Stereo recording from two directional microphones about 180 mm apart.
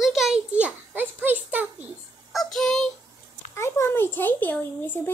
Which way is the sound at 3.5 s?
15° left (ahead or behind).